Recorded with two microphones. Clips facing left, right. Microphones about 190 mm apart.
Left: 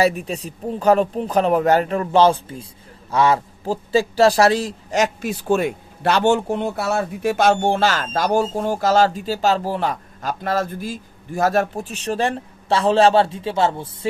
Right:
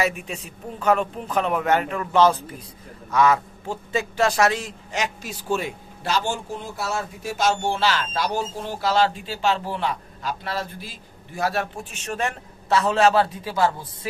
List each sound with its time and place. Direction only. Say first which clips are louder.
0.0 s a man's voice: left 6 dB; 35° left (ahead or behind)